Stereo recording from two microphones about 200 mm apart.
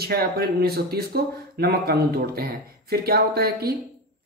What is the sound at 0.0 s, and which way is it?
A man's voice, 50° right (ahead or behind).